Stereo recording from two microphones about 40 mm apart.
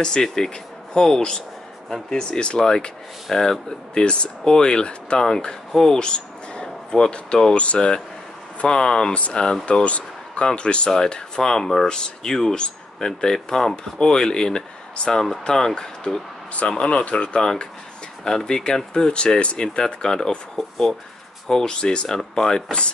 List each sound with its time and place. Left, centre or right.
0.0 s speech: centre
3.3 s speech: centre
3.9 s speech: left
7.5 s speech: left
8.6 s speech: centre
9.1 s speech: left
17.4 s speech: centre
20.5 s speech: centre
21.5 s speech: centre